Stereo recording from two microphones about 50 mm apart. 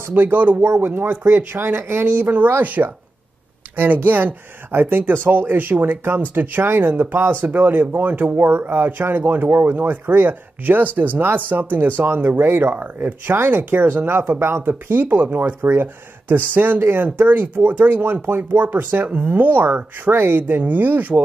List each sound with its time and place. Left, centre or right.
0.1 s speech: right